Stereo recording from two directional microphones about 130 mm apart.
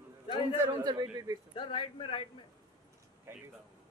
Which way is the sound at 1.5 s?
40° left (ahead or behind).